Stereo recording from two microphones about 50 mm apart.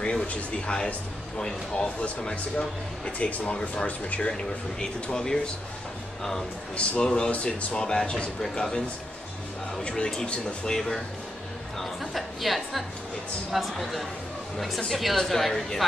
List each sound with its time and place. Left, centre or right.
0.0 s a sound: centre
0.3 s speech: left
6.8 s speech: left
7.7 s speech: centre
9.8 s a woman's voice: centre